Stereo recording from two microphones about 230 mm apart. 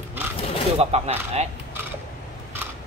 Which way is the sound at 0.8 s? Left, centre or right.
Right.